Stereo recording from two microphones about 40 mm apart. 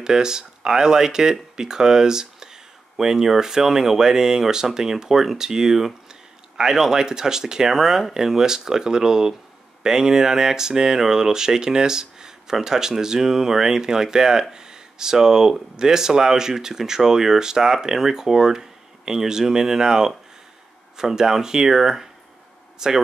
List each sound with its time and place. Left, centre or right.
0.0 s speech: centre